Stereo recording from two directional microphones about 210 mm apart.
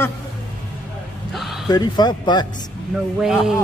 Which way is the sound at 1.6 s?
20° left (ahead or behind).